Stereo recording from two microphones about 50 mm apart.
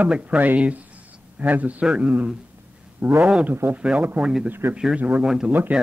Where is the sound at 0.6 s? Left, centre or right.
Right.